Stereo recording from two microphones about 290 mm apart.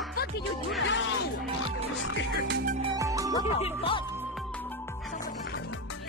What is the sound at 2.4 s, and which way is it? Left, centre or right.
Music, right.